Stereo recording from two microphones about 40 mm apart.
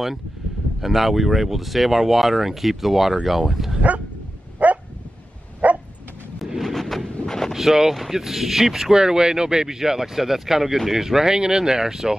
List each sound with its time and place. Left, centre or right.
0.7 s speech: centre
4.6 s dog: right
6.6 s a sound: centre
7.2 s vehicle: centre
7.5 s speech: centre